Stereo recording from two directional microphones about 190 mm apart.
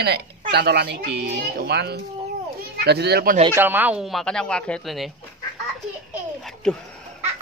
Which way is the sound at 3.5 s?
10° right (ahead or behind).